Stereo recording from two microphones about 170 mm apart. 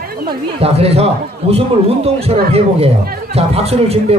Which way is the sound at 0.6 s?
35° right (ahead or behind).